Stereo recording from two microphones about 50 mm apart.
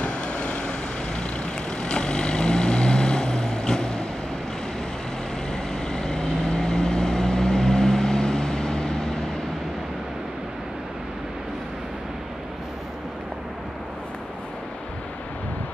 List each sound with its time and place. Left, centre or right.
0.0 s vehicle: left
1.8 s vehicle: centre
5.5 s vehicle: centre